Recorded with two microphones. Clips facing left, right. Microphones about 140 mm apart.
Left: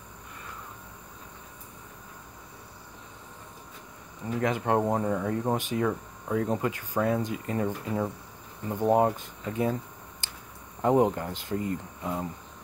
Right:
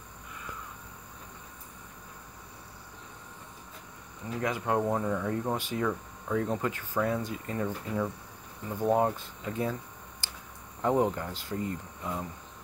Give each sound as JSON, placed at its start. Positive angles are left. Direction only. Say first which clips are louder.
{"t": 4.4, "sound": "speech", "louder": "left 4 dB", "side_deg": 45}
{"t": 4.7, "sound": "speech", "louder": "left 3 dB", "side_deg": 30}
{"t": 5.4, "sound": "speech", "louder": "left 3 dB", "side_deg": 20}
{"t": 5.8, "sound": "speech", "louder": "left 3 dB", "side_deg": 30}
{"t": 6.5, "sound": "speech", "louder": "left 2 dB", "side_deg": 20}
{"t": 7.5, "sound": "speech", "louder": "left 2 dB", "side_deg": 35}
{"t": 8.6, "sound": "speech", "louder": "left 3 dB", "side_deg": 20}
{"t": 10.8, "sound": "speech", "louder": "left 4 dB", "side_deg": 20}
{"t": 12.0, "sound": "cricket", "louder": "left 2 dB", "side_deg": 25}